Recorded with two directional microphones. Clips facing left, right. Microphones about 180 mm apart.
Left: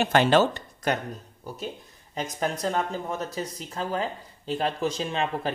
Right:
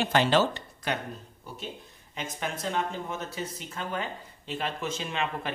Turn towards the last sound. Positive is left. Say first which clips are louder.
# left 4 dB
turn(degrees=35)  # may be behind; listen again after turning